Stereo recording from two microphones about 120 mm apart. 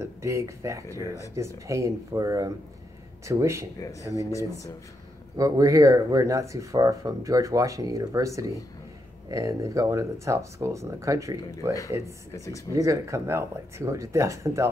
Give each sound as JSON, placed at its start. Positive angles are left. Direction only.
{"t": 0.0, "sound": "speech", "side_deg": -25}
{"t": 5.4, "sound": "speech", "side_deg": -25}
{"t": 12.3, "sound": "speech", "side_deg": 25}
{"t": 12.7, "sound": "speech", "side_deg": -25}